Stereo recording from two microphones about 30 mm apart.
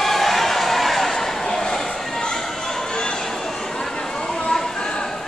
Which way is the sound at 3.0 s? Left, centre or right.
Left.